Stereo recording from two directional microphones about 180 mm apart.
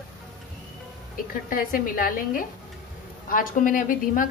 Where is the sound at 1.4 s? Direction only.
50° left (ahead or behind).